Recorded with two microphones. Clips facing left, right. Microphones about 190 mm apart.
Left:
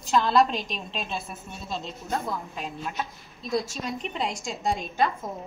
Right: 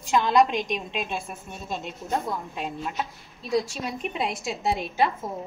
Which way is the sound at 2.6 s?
5° right (ahead or behind).